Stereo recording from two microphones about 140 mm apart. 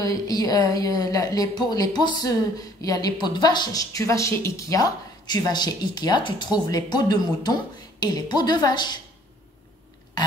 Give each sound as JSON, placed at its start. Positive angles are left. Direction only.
{"t": 0.0, "sound": "a woman's voice", "side_deg": 25}